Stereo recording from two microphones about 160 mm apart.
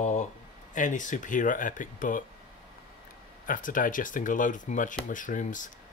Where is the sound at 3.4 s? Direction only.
60° left (ahead or behind).